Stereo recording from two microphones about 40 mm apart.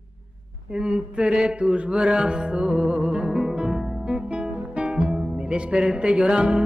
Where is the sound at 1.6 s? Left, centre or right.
Right.